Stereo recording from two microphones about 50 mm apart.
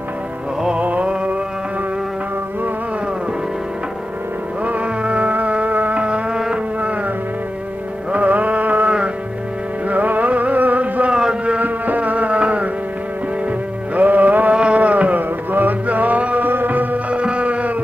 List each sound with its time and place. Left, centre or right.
0.7 s music: right
4.6 s music: right
6.3 s music: centre
8.1 s mantra: right
9.8 s music: right
11.1 s a sound: centre
11.6 s music: right
13.9 s music: right